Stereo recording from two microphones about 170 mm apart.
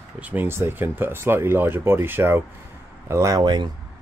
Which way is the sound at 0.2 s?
10° right (ahead or behind).